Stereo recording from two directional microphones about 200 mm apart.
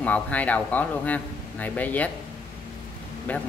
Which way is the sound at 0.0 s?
5° left (ahead or behind).